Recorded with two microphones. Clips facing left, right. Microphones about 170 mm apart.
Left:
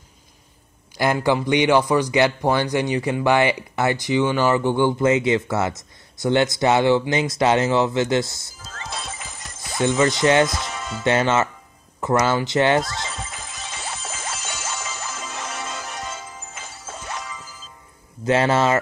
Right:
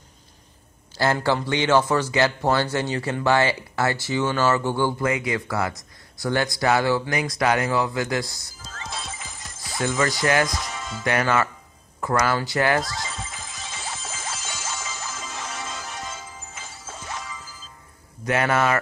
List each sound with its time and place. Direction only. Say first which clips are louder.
0.9 s a man's voice: left 2 dB; 15° left (ahead or behind)
8.7 s music: left 2 dB; 65° left (ahead or behind)
9.8 s a man's voice: left 5 dB; 20° left (ahead or behind)
10.6 s music: left 3 dB; 70° left (ahead or behind)
11.1 s a man's voice: left 3 dB; 25° left (ahead or behind)
13.0 s music: left 2 dB; 70° left (ahead or behind)
18.2 s a man's voice: left 3 dB; 25° left (ahead or behind)